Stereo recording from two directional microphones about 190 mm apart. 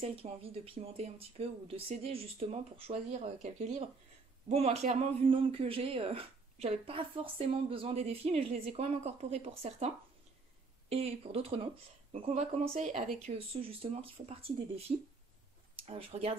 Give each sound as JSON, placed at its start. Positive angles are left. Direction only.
{"t": 0.0, "sound": "speech", "side_deg": -30}